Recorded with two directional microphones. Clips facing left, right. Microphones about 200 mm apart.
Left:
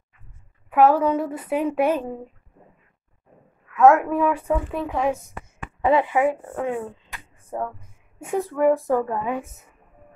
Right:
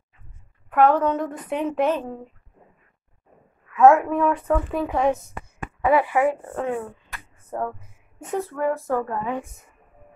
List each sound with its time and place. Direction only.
0.7 s a woman's voice: 5° left (ahead or behind)
3.7 s a woman's voice: centre (ahead or behind)
5.9 s a woman's voice: 20° left (ahead or behind)